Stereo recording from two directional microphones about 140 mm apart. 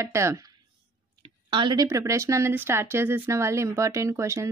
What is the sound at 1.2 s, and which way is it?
Speech, 35° right (ahead or behind).